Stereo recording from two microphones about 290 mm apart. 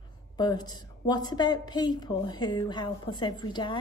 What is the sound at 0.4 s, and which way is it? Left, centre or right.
A woman's voice, centre.